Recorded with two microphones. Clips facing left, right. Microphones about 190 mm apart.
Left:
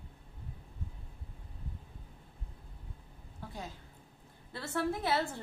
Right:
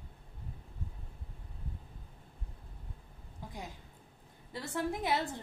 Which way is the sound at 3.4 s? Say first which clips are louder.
Left 1 dB; 15° right (ahead or behind).